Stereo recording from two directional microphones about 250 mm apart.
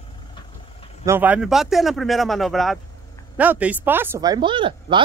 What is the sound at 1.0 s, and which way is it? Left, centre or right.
Speech, centre.